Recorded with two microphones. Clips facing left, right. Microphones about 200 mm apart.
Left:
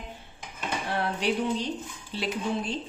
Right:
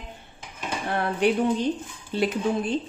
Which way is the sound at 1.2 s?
55° right (ahead or behind).